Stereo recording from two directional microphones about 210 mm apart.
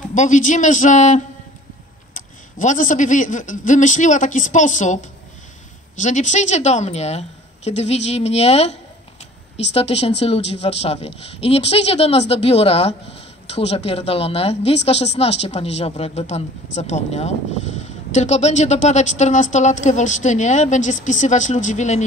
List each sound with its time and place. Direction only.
0.1 s speech: 35° left (ahead or behind)
9.8 s speech: 30° left (ahead or behind)